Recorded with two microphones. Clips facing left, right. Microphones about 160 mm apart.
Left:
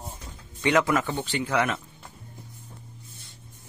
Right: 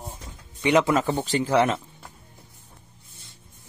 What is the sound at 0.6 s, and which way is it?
Speech, 20° right (ahead or behind).